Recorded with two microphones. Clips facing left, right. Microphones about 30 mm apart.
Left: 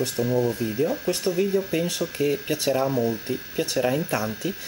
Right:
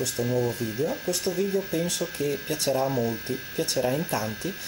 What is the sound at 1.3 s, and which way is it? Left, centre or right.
Speech, left.